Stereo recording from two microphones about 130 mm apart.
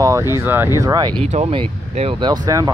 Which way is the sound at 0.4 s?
15° right (ahead or behind).